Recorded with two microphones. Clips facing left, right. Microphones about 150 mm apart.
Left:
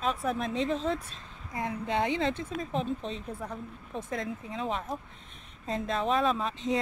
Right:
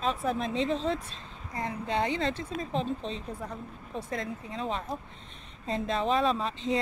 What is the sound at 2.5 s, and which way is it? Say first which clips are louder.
Speech: even; 5° left (ahead or behind).